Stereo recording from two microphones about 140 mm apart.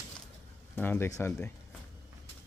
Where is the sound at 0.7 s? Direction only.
15° left (ahead or behind).